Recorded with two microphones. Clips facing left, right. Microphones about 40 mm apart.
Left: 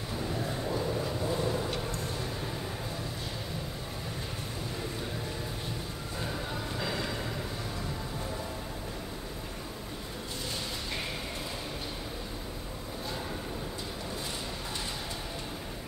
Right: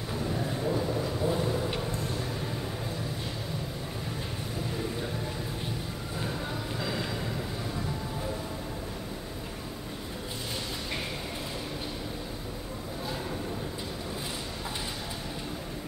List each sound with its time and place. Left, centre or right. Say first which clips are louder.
0.1 s vehicle: right 2 dB; centre
6.8 s vehicle: right 1 dB; centre